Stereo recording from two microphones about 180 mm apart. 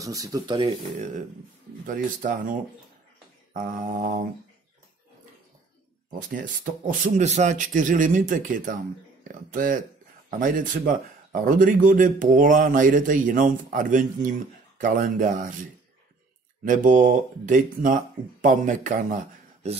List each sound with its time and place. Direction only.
0.0 s speech: 20° right (ahead or behind)
1.9 s a man's voice: 45° right (ahead or behind)
6.0 s a man's voice: 50° right (ahead or behind)
11.4 s a man's voice: 50° right (ahead or behind)
16.6 s a man's voice: 45° right (ahead or behind)